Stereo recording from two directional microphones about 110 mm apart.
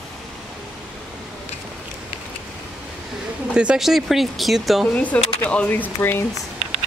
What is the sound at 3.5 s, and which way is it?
Speech, 10° right (ahead or behind).